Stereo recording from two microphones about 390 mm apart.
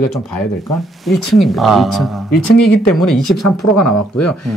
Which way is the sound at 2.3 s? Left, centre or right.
Left.